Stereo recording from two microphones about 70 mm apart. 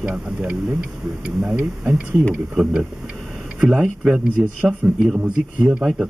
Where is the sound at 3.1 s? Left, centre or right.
Centre.